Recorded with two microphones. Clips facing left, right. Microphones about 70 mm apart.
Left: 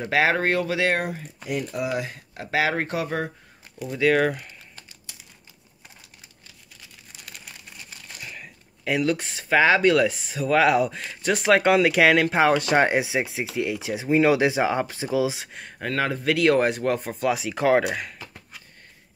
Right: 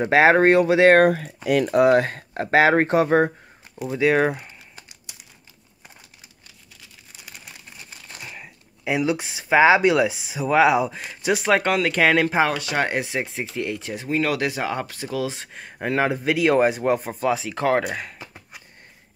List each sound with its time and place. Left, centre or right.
0.0 s speech: right
0.9 s speech: right
1.9 s speech: right
4.0 s crumpling: right
7.2 s a sound: centre
8.2 s speech: centre
11.6 s speech: centre
12.7 s speech: centre
15.8 s a man's voice: centre
16.3 s speech: centre
18.2 s a sound: centre